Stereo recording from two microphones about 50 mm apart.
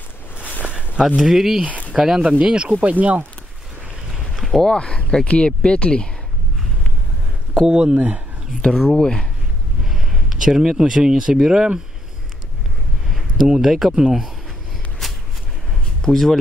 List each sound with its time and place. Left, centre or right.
0.7 s a sound: right
1.0 s speech: centre; by 3.2 s right
4.1 s boat: centre
4.6 s speech: centre
7.5 s speech: centre
8.9 s speech: centre
9.8 s speech: centre
13.5 s speech: centre
15.0 s a sound: centre
16.0 s speech: centre